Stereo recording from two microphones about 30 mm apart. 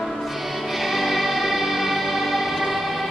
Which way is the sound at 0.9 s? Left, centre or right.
Centre.